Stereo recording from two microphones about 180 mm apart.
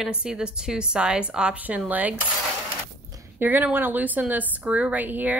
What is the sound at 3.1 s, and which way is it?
A woman's voice, 10° right (ahead or behind).